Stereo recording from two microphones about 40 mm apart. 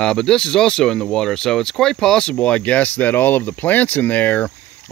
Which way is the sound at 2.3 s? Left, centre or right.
Left.